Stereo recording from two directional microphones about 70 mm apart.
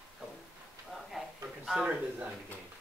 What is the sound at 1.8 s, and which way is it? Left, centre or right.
Speech, right.